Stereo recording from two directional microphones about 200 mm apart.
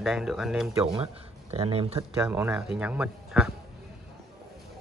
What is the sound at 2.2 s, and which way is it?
Speech, 10° right (ahead or behind).